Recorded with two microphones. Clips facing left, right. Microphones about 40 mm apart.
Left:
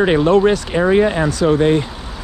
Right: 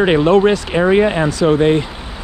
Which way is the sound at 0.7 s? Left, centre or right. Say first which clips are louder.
Right 1 dB; right.